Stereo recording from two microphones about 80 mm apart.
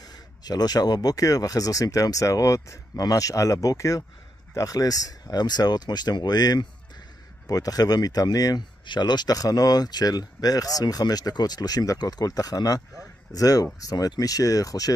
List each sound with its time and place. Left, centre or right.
0.0 s speech: left
8.8 s speech: left